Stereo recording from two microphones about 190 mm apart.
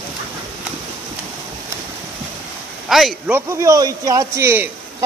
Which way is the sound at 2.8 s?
Centre (ahead or behind).